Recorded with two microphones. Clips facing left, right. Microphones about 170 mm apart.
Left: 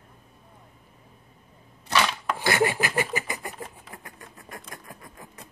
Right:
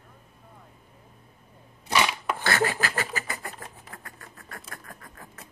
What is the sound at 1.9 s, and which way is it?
Chopping, 10° right (ahead or behind).